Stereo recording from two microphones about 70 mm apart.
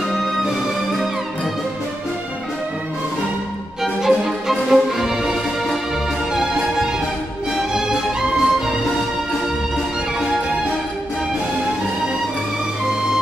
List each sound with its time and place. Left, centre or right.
0.5 s music: centre
3.8 s music: centre